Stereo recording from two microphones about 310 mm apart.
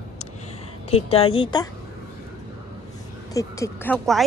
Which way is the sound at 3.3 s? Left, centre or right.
Centre.